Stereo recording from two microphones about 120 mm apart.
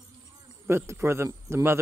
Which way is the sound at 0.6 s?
20° right (ahead or behind).